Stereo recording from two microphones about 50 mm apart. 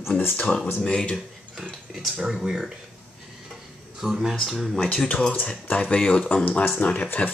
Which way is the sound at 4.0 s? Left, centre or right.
Centre.